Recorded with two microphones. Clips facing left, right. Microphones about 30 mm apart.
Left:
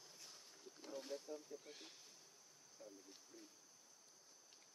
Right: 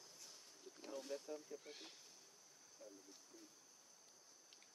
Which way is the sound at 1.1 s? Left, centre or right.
Right.